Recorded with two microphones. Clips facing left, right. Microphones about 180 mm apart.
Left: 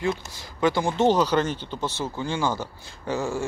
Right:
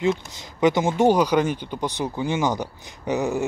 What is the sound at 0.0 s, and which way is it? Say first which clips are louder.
Speech: right 4 dB; 20° right (ahead or behind).